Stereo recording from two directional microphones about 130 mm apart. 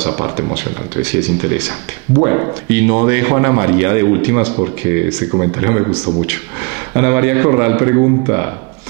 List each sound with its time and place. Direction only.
0.2 s speech: 25° right (ahead or behind)
6.9 s speech: 20° right (ahead or behind)